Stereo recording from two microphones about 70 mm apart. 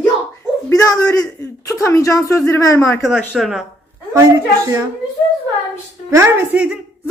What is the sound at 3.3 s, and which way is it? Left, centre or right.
Speech, centre.